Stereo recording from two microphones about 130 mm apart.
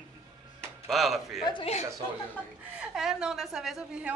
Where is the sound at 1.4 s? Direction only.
40° left (ahead or behind).